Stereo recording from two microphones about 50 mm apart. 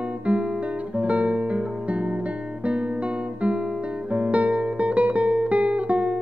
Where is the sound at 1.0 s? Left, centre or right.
Right.